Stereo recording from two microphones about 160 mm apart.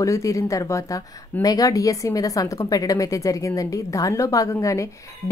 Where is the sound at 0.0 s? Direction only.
20° left (ahead or behind).